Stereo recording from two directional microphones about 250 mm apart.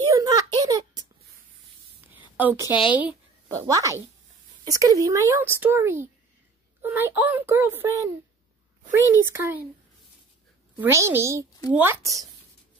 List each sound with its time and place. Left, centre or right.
0.1 s a sound: centre
2.1 s a sound: centre
2.7 s speech: centre
3.4 s speech: centre
9.2 s speech: centre
10.8 s speech: centre